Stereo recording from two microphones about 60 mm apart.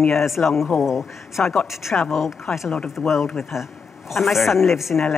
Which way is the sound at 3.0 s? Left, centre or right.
Centre.